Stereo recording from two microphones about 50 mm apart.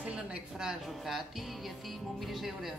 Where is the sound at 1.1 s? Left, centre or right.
Centre.